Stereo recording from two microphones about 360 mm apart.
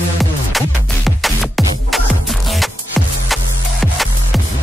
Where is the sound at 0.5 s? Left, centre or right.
Centre.